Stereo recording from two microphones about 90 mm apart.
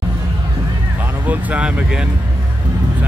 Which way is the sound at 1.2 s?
15° right (ahead or behind).